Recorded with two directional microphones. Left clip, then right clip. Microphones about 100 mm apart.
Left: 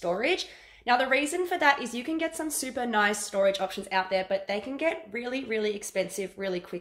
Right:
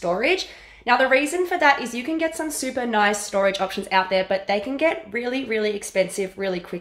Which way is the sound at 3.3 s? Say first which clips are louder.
Right 4 dB; 5° left (ahead or behind).